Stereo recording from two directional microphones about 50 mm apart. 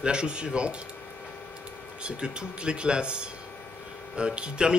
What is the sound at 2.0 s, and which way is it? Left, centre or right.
Speech, centre.